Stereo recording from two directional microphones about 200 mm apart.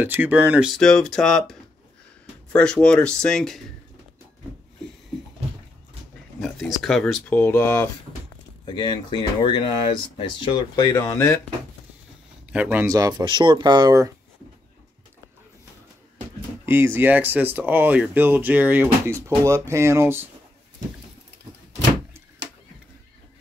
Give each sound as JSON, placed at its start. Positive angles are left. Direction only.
{"t": 0.0, "sound": "speech", "side_deg": -10}
{"t": 6.4, "sound": "speech", "side_deg": 0}
{"t": 8.6, "sound": "speech", "side_deg": 20}
{"t": 12.5, "sound": "speech", "side_deg": -10}
{"t": 16.6, "sound": "speech", "side_deg": -10}